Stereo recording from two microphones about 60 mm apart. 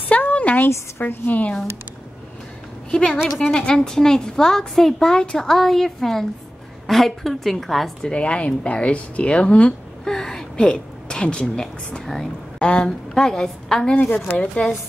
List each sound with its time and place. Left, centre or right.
0.1 s a sound: left
1.0 s speech: left
2.9 s a woman's voice: centre
8.0 s speech: centre
13.9 s speech: left